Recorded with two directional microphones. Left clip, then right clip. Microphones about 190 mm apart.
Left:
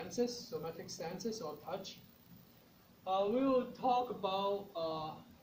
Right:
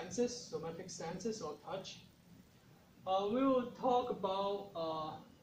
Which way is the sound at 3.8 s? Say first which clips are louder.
Even; 25° left (ahead or behind).